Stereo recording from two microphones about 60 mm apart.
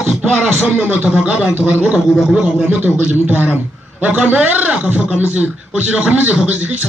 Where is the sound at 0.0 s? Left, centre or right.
Centre.